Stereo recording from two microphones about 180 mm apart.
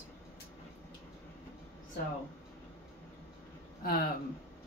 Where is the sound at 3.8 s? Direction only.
55° left (ahead or behind).